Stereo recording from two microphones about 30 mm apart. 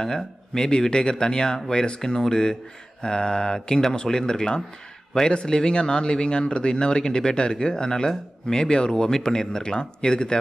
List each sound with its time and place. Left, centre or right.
0.0 s speech: left